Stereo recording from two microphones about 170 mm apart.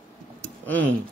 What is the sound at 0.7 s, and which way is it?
Speech, 10° left (ahead or behind).